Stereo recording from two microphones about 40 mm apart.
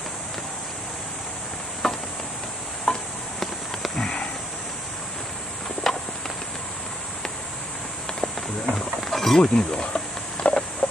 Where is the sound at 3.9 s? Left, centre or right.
Left.